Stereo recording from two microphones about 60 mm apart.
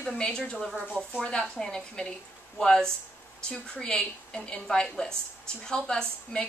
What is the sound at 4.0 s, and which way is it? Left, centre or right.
Speech, centre.